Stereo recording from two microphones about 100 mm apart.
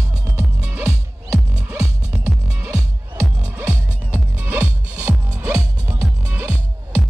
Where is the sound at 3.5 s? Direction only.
20° right (ahead or behind).